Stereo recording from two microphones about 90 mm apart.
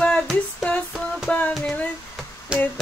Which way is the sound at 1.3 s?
15° left (ahead or behind).